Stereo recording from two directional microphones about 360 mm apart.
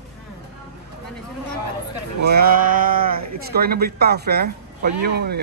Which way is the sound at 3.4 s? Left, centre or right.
Right.